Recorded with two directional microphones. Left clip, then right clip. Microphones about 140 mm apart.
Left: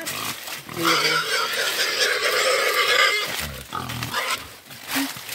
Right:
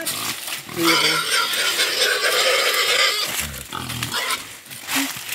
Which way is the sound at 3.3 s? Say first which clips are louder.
Right 2 dB; 20° right (ahead or behind).